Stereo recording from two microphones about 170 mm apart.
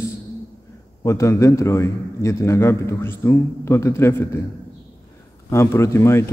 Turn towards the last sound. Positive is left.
turn(degrees=15)  # may be behind; listen again after turning